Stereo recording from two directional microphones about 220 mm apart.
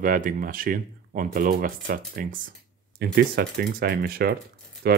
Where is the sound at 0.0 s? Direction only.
40° right (ahead or behind).